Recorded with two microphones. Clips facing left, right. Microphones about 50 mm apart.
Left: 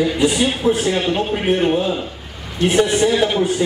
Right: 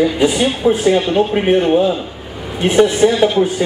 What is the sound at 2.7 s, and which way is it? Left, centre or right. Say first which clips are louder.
Speech: right 4 dB; centre.